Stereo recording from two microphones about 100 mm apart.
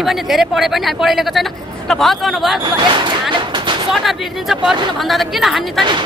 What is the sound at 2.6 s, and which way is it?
Speech, 55° right (ahead or behind).